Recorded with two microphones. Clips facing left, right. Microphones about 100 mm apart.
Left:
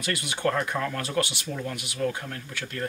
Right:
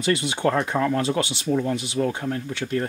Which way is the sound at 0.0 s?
25° right (ahead or behind).